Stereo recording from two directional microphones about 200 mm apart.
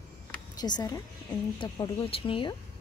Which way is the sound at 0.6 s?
20° left (ahead or behind).